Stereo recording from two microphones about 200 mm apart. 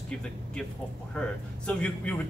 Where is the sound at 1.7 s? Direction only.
5° left (ahead or behind).